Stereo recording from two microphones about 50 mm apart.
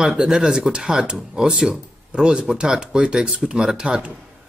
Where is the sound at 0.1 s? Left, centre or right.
Centre.